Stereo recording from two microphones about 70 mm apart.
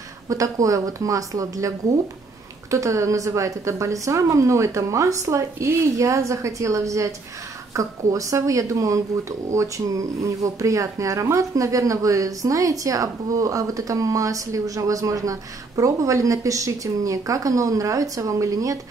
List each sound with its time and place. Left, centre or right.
0.3 s speech: right